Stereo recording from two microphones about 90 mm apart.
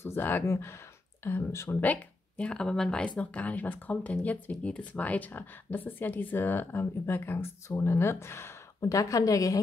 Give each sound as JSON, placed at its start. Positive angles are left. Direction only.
{"t": 0.0, "sound": "speech", "side_deg": 25}
{"t": 1.8, "sound": "speech", "side_deg": 15}